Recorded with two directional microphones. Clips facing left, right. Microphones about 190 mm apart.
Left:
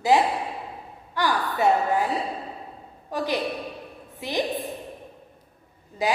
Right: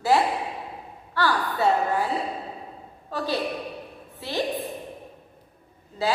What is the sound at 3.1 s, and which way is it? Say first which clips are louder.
A woman's voice: left 1 dB; 15° left (ahead or behind).